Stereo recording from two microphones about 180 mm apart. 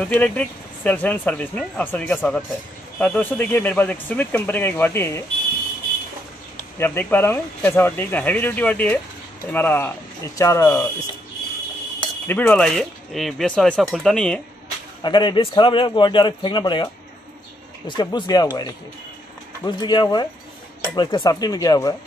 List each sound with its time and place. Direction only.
0.0 s speech: 5° left (ahead or behind)
6.8 s speech: 10° left (ahead or behind)
12.0 s speech: 10° left (ahead or behind)
15.0 s a man's voice: 25° left (ahead or behind)